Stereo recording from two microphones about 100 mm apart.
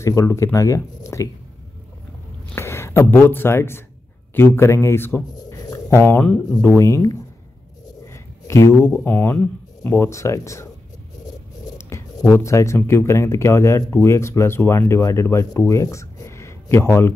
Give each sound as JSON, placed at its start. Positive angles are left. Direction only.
{"t": 0.0, "sound": "speech", "side_deg": 30}
{"t": 2.5, "sound": "speech", "side_deg": 25}
{"t": 5.3, "sound": "a sound", "side_deg": 40}
{"t": 5.9, "sound": "speech", "side_deg": 20}
{"t": 6.6, "sound": "speech", "side_deg": 25}
{"t": 12.2, "sound": "speech", "side_deg": 30}